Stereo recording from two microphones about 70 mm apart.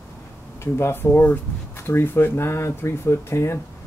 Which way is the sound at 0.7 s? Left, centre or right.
Left.